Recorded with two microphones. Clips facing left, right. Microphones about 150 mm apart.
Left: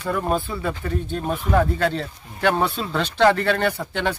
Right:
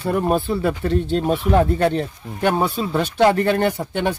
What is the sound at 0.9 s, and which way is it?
Speech, 75° right (ahead or behind).